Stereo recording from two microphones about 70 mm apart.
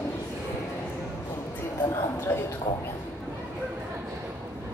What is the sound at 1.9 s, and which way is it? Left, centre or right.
Speech, left.